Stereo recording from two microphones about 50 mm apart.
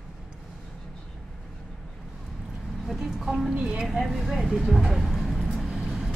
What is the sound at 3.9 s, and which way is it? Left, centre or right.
Speech, centre.